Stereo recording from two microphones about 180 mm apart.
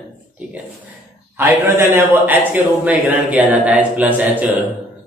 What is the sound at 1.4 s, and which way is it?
A man's voice, 15° right (ahead or behind).